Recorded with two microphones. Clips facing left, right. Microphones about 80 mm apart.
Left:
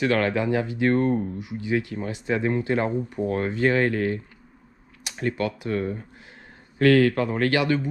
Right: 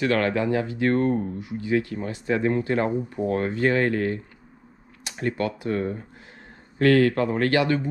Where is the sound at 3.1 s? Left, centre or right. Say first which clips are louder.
Right 1 dB; right.